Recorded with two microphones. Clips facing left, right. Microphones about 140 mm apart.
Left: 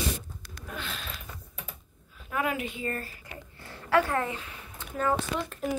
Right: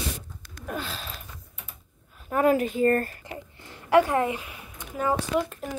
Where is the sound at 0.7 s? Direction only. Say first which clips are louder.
Right 4 dB; 35° right (ahead or behind).